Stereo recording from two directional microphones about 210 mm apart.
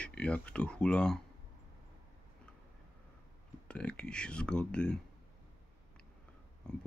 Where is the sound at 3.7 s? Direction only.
5° left (ahead or behind).